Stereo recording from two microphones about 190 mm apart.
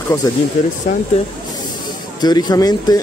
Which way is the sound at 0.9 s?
35° left (ahead or behind).